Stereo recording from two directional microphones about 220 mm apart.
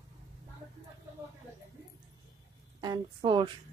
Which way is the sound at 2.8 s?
20° right (ahead or behind).